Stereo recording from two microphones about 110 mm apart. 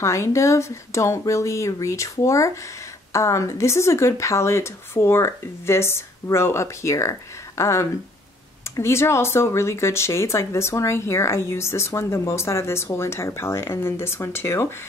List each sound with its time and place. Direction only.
0.0 s speech: 25° left (ahead or behind)